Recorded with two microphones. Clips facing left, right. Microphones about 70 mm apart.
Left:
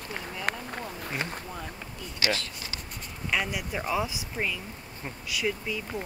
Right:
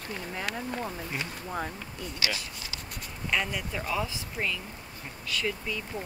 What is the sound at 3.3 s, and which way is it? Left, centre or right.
Speech, centre.